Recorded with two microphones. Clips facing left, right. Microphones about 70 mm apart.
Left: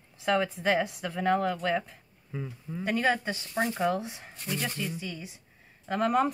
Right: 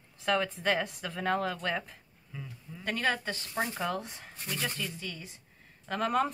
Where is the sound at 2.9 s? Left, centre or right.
Centre.